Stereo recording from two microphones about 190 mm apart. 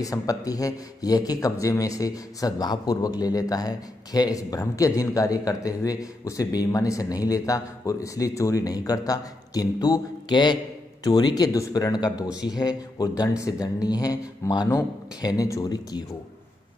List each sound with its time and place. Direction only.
0.0 s a man's voice: 20° left (ahead or behind)